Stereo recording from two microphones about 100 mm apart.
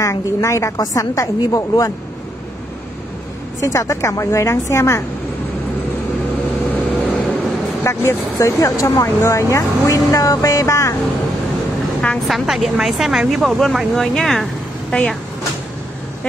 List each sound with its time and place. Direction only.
0.0 s speech: 30° left (ahead or behind)
3.6 s speech: 30° left (ahead or behind)
6.7 s vehicle: 15° left (ahead or behind)
7.8 s speech: 25° left (ahead or behind)
12.0 s speech: 5° left (ahead or behind)